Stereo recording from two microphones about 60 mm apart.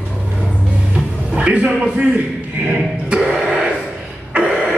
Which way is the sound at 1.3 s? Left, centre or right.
Centre.